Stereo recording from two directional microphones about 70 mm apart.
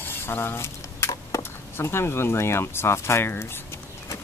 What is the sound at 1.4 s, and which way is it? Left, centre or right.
Speech, left.